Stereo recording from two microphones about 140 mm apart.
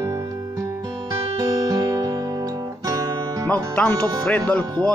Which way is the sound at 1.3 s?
25° right (ahead or behind).